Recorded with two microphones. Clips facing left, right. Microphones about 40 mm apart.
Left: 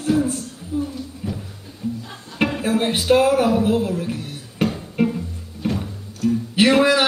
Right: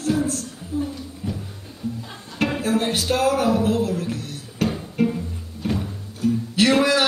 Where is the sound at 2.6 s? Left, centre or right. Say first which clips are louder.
Left 5 dB; centre.